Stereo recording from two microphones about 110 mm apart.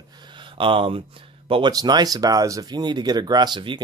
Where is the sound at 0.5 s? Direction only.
50° right (ahead or behind).